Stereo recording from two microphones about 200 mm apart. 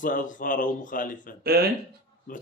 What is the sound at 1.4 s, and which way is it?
Speech, 50° right (ahead or behind).